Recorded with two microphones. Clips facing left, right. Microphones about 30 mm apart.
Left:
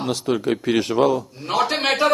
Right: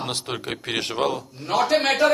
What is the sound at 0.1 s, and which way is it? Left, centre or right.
Speech, right.